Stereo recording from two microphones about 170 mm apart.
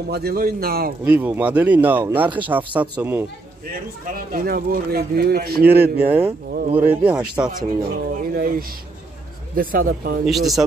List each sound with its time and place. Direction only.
0.1 s speech: 65° right (ahead or behind)
1.0 s speech: 10° right (ahead or behind)
4.0 s speech: 60° right (ahead or behind)
5.7 s speech: 10° right (ahead or behind)
8.1 s speech: 55° right (ahead or behind)
10.2 s speech: centre (ahead or behind)